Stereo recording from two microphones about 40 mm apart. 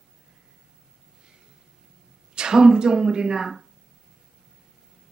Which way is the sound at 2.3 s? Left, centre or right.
Centre.